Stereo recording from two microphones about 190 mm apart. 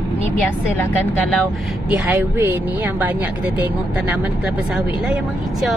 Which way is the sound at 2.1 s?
10° right (ahead or behind).